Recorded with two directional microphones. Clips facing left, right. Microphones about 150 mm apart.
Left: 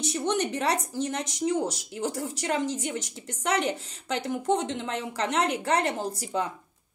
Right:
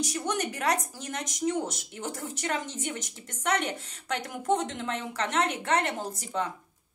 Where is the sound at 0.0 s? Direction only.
25° left (ahead or behind).